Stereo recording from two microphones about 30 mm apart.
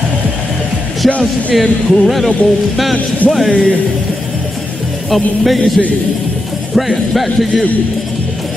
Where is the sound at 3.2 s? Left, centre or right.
Left.